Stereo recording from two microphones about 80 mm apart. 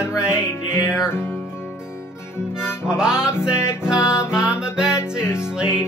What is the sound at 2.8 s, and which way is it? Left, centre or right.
Music, centre.